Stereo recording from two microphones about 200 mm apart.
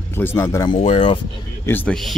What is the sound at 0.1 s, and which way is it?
Speech, 10° left (ahead or behind).